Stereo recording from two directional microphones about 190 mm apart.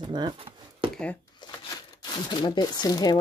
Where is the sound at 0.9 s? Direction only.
5° left (ahead or behind).